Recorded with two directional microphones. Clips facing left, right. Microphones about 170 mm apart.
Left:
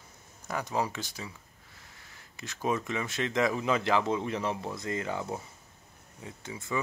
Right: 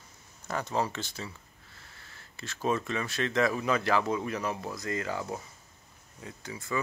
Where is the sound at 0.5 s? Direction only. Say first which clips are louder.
Right 1 dB; 10° left (ahead or behind).